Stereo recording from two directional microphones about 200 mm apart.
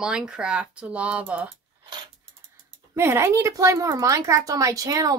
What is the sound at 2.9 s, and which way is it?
Speech, 10° right (ahead or behind).